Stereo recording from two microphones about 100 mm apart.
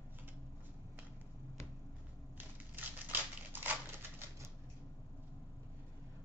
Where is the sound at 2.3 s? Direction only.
20° right (ahead or behind).